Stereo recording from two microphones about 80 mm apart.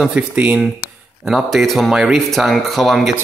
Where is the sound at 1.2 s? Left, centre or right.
Centre.